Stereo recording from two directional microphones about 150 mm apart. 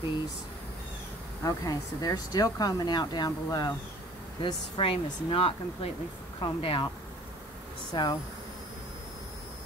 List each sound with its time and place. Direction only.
1.4 s speech: 25° left (ahead or behind)
4.4 s speech: 35° left (ahead or behind)
7.9 s speech: 30° left (ahead or behind)